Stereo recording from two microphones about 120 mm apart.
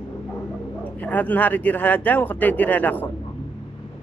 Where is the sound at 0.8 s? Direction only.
15° left (ahead or behind).